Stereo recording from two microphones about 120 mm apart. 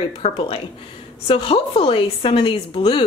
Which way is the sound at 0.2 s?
50° left (ahead or behind).